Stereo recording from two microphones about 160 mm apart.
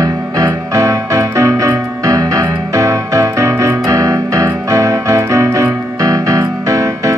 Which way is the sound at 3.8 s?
20° right (ahead or behind).